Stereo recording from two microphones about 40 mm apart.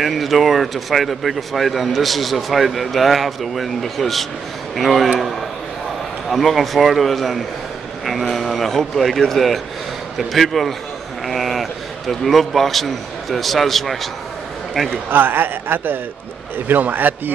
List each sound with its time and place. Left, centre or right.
0.0 s speech: centre
6.3 s speech: centre
11.2 s a sound: centre
12.1 s speech: centre
15.0 s a man's voice: right